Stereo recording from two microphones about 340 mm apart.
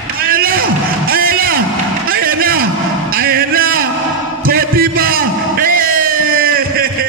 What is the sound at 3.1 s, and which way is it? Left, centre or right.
Music, right.